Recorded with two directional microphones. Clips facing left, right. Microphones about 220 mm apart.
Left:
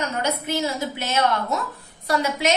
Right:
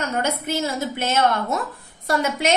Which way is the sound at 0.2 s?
50° right (ahead or behind).